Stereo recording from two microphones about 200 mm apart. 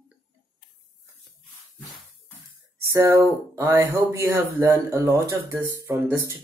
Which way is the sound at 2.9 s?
10° right (ahead or behind).